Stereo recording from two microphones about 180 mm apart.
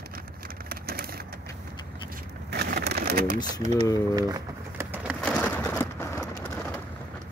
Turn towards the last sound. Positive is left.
turn(degrees=15)  # may be behind; listen again after turning